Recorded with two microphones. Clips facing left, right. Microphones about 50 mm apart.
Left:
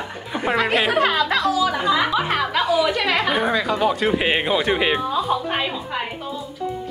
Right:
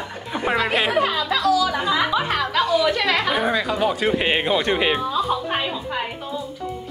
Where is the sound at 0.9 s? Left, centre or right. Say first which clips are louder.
Left 2 dB; left.